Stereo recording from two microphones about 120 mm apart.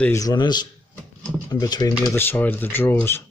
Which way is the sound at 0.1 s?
30° left (ahead or behind).